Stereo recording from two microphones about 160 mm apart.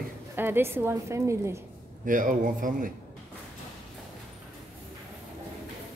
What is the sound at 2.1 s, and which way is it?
Speech, 60° right (ahead or behind).